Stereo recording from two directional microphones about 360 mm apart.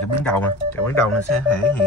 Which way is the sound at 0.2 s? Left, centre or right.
Centre.